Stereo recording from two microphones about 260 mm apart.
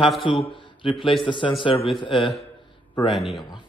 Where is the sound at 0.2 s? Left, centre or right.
Centre.